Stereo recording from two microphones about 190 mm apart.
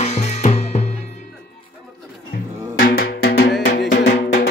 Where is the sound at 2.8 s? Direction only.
55° left (ahead or behind).